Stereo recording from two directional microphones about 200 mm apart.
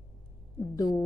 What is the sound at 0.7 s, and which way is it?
Speech, 20° left (ahead or behind).